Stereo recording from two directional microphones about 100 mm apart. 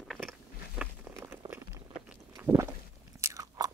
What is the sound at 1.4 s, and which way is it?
Chewing, 50° right (ahead or behind).